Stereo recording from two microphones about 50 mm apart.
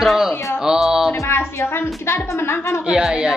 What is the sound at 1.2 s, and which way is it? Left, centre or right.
A woman's voice, left.